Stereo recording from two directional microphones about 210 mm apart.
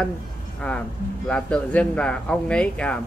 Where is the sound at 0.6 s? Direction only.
5° left (ahead or behind).